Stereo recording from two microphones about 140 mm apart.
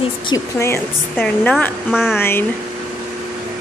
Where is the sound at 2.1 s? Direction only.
15° left (ahead or behind).